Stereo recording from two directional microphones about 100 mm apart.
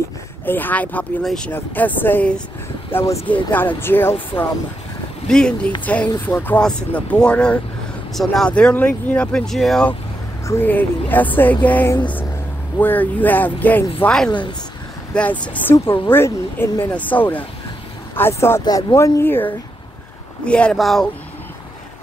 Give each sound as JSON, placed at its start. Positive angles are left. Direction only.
{"t": 0.5, "sound": "speech", "side_deg": 20}
{"t": 1.2, "sound": "speech", "side_deg": 5}
{"t": 1.5, "sound": "speech", "side_deg": 15}
{"t": 5.3, "sound": "speech", "side_deg": 10}
{"t": 10.4, "sound": "speech", "side_deg": 25}
{"t": 14.0, "sound": "speech", "side_deg": 5}
{"t": 15.7, "sound": "speech", "side_deg": 25}
{"t": 18.6, "sound": "speech", "side_deg": 45}
{"t": 18.9, "sound": "speech", "side_deg": 30}
{"t": 20.4, "sound": "speech", "side_deg": 10}